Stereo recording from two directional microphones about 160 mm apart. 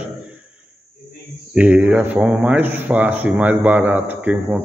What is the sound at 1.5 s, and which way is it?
Speech, 10° right (ahead or behind).